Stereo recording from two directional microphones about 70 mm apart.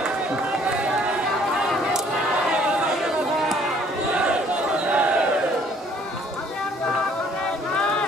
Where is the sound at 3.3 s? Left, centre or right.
Centre.